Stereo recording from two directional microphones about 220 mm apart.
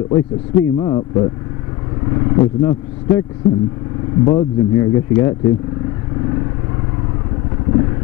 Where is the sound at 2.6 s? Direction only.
20° left (ahead or behind).